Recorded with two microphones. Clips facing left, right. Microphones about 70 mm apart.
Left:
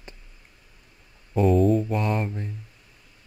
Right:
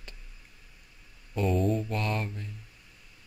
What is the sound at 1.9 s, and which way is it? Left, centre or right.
Speech, centre.